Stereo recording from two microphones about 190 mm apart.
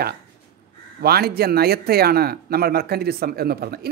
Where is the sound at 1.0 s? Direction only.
55° right (ahead or behind).